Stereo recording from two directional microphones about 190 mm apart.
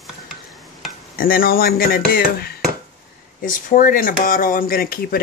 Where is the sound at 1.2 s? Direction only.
50° left (ahead or behind).